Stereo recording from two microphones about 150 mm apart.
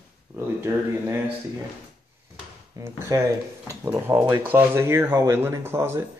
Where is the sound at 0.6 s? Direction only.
15° right (ahead or behind).